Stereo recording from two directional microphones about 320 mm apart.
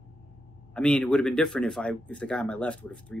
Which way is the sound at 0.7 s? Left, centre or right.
Centre.